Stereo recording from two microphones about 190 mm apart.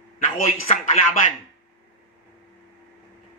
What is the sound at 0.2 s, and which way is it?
Speech, 40° left (ahead or behind).